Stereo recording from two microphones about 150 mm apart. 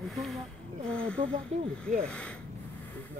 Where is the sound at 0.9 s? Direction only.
5° left (ahead or behind).